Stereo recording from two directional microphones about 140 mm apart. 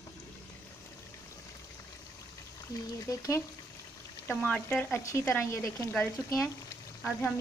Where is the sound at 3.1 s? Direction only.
25° left (ahead or behind).